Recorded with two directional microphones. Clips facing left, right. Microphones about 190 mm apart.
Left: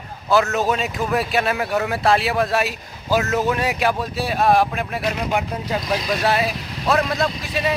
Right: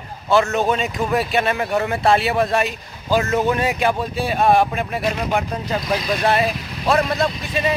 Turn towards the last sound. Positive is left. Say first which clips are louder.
# right 1 dB
turn(degrees=0)  # may be behind; listen again after turning